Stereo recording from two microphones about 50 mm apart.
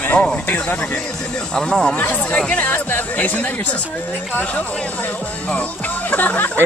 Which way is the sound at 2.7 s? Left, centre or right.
Left.